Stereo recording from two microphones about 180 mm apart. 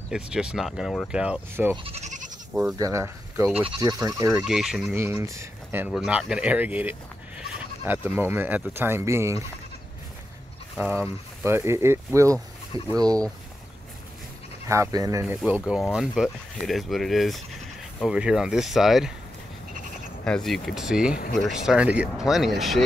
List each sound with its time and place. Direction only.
0.1 s speech: 5° right (ahead or behind)
1.8 s goat: 35° right (ahead or behind)
2.8 s speech: 15° right (ahead or behind)
4.5 s speech: centre (ahead or behind)
4.9 s speech: 15° right (ahead or behind)
11.4 s speech: 15° right (ahead or behind)
14.7 s speech: 20° right (ahead or behind); by 19.1 s centre (ahead or behind)
20.2 s speech: 5° left (ahead or behind)